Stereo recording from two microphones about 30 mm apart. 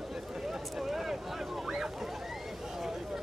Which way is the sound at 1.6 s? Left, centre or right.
Centre.